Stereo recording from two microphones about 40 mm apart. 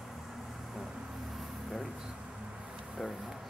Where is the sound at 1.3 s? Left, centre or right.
Centre.